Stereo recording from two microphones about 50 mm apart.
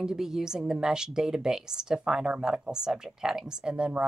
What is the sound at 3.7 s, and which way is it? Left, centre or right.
Speech, right.